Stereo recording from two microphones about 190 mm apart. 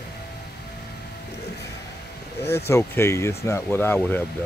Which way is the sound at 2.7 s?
15° left (ahead or behind).